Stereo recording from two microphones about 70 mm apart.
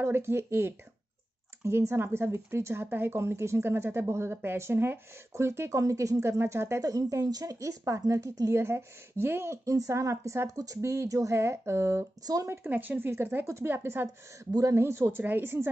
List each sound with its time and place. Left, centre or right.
0.0 s speech: right
6.8 s speech: right
7.5 s a woman's voice: right
12.6 s speech: right
15.0 s a woman's voice: right